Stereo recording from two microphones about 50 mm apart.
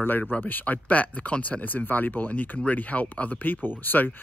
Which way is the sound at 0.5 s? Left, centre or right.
Left.